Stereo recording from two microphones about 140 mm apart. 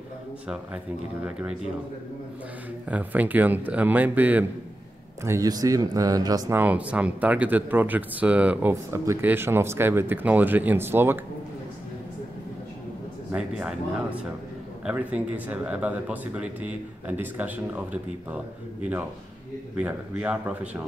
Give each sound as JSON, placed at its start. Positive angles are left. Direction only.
{"t": 2.9, "sound": "speech", "side_deg": -10}
{"t": 5.2, "sound": "speech", "side_deg": -25}
{"t": 6.6, "sound": "speech", "side_deg": -10}
{"t": 13.3, "sound": "speech", "side_deg": -5}